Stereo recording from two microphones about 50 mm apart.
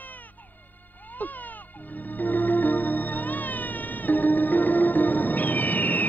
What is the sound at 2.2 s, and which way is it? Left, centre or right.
Music, left.